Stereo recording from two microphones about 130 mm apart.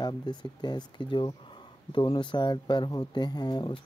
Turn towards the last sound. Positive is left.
turn(degrees=35)  # may be behind; listen again after turning